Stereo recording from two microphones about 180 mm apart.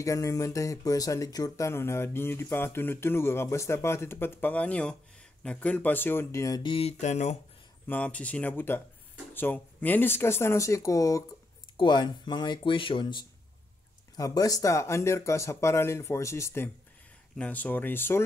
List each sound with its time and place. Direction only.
0.0 s speech: 15° left (ahead or behind); by 7.3 s 40° left (ahead or behind)
7.8 s speech: 10° left (ahead or behind)